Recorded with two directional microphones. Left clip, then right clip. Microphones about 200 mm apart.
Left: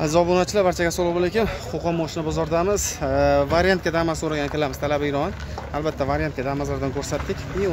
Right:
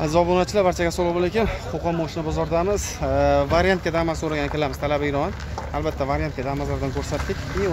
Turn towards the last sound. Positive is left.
turn(degrees=-50)  # may be behind; listen again after turning